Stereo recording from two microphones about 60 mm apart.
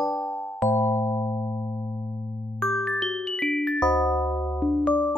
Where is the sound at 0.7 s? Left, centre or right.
Left.